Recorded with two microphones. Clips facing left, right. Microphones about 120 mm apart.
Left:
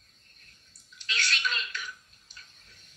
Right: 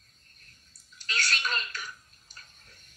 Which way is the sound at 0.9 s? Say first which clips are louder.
Right 1 dB; 40° right (ahead or behind).